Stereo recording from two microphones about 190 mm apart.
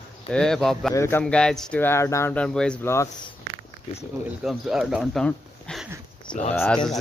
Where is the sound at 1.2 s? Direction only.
5° left (ahead or behind).